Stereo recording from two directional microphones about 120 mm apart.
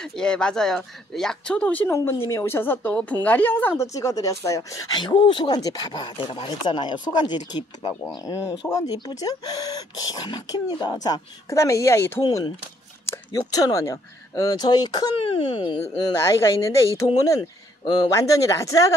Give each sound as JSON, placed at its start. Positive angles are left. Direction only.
{"t": 0.0, "sound": "speech", "side_deg": 5}
{"t": 1.9, "sound": "a woman's voice", "side_deg": 20}
{"t": 8.3, "sound": "speech", "side_deg": 25}
{"t": 12.2, "sound": "speech", "side_deg": 35}
{"t": 15.2, "sound": "speech", "side_deg": 50}
{"t": 16.3, "sound": "a woman's voice", "side_deg": 25}
{"t": 17.4, "sound": "a sound", "side_deg": 40}
{"t": 18.1, "sound": "a woman's voice", "side_deg": 25}